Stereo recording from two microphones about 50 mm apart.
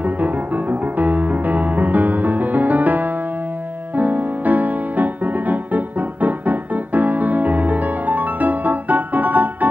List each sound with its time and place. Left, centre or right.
0.0 s music: right